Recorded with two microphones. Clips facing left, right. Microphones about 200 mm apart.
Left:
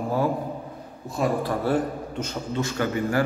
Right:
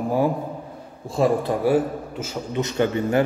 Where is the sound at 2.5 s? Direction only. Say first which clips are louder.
Right 5 dB; 20° right (ahead or behind).